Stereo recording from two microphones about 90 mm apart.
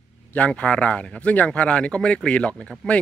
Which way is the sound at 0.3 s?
15° left (ahead or behind).